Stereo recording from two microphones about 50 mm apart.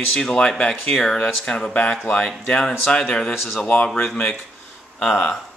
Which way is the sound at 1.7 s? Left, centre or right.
Left.